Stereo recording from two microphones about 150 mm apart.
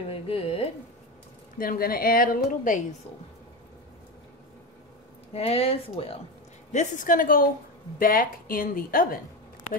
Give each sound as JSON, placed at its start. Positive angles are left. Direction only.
{"t": 0.1, "sound": "a sound", "side_deg": 40}
{"t": 1.6, "sound": "a woman's voice", "side_deg": 75}
{"t": 5.3, "sound": "a woman's voice", "side_deg": 40}
{"t": 6.7, "sound": "a woman's voice", "side_deg": 55}